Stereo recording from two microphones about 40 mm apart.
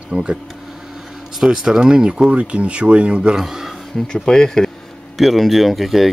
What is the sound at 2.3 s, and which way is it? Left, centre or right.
Speech, right.